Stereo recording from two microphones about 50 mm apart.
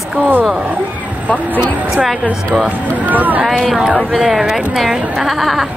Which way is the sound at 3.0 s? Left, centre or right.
Right.